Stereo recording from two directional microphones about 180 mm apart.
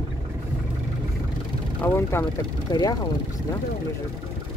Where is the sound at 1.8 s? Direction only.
15° left (ahead or behind).